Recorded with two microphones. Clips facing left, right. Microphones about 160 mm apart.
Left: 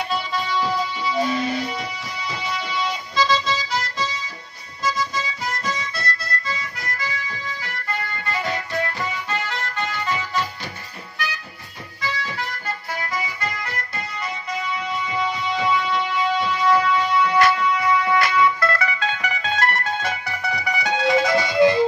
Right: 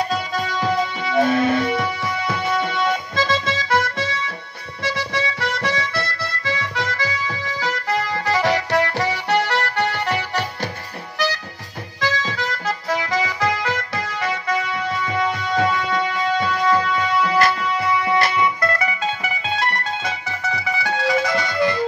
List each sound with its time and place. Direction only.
0.1 s music: 45° right (ahead or behind)
4.8 s harmonica: 70° right (ahead or behind)
11.1 s harmonica: 90° right
12.0 s music: 90° right; by 20.9 s 15° left (ahead or behind)
20.9 s music: centre (ahead or behind)
21.5 s music: 20° left (ahead or behind)